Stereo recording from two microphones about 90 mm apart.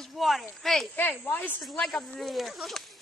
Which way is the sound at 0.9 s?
20° left (ahead or behind).